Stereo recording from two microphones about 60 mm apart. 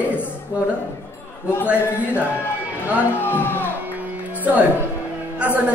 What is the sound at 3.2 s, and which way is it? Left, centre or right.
Speech, left.